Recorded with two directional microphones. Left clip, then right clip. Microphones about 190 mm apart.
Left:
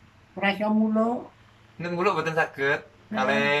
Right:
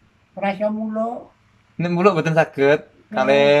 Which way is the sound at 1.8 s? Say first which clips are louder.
Right 8 dB; 60° right (ahead or behind).